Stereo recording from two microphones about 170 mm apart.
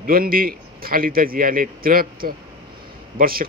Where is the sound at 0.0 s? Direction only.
60° right (ahead or behind).